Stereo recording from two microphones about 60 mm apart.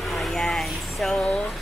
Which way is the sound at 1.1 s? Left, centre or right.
Centre.